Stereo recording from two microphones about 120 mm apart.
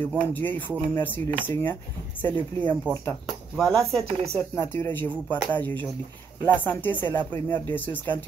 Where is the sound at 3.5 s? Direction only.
5° left (ahead or behind).